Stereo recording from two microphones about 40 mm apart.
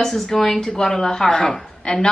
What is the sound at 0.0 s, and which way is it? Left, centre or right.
Speech, centre.